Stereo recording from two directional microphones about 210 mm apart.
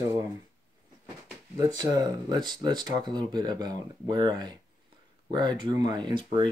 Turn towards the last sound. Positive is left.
turn(degrees=-20)  # may be behind; listen again after turning